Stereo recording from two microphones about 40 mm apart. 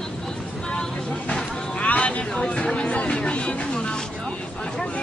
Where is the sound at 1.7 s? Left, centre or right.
Left.